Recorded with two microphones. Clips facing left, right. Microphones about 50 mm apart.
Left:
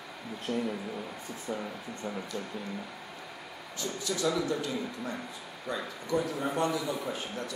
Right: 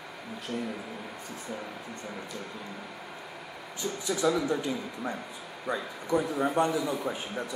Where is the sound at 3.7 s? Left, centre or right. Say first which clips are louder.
Right 2 dB; right.